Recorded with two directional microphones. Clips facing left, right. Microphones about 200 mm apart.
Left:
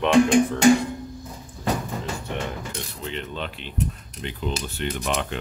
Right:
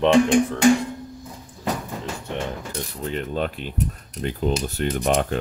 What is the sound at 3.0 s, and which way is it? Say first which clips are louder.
Speech: right 7 dB; 45° right (ahead or behind).